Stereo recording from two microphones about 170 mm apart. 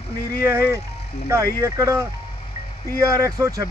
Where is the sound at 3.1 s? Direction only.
20° right (ahead or behind).